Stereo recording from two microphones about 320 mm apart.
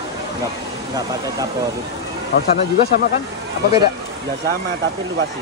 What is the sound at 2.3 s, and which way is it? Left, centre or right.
Speech, left.